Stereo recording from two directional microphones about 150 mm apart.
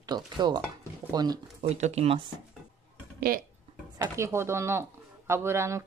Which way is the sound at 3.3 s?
80° right.